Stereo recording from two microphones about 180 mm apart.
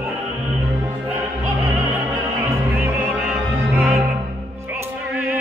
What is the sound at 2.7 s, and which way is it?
Music, 10° right (ahead or behind).